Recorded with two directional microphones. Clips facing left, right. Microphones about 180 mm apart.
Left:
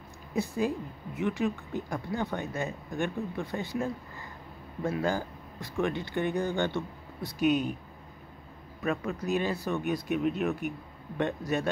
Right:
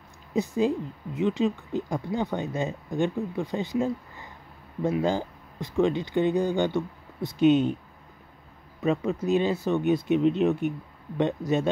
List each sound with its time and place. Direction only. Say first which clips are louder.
0.3 s speech: right 5 dB; 20° right (ahead or behind)
8.8 s speech: right 6 dB; 25° right (ahead or behind)